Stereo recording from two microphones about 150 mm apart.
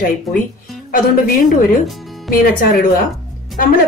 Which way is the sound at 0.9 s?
65° left (ahead or behind).